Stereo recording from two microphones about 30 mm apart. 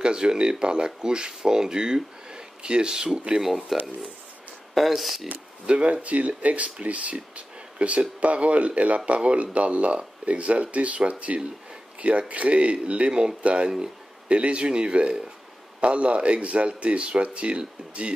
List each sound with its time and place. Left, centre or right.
0.0 s speech: right
2.2 s a sound: right
3.3 s speech: centre
4.7 s speech: centre
5.7 s speech: right
6.0 s speech: right
13.1 s speech: right
13.4 s speech: right